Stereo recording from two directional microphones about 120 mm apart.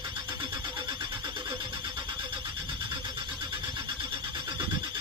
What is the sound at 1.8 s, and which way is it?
Neigh, 40° right (ahead or behind).